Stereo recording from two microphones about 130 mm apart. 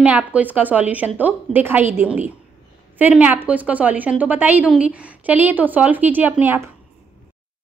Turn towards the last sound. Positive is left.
turn(degrees=-15)  # may be behind; listen again after turning